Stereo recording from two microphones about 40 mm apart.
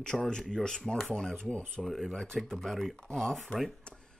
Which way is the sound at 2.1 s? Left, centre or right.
Centre.